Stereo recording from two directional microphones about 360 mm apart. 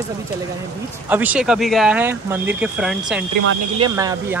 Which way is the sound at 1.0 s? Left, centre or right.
Centre.